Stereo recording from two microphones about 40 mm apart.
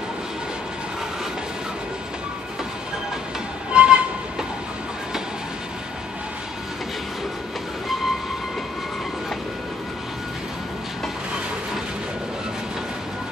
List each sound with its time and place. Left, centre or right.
3.7 s music: right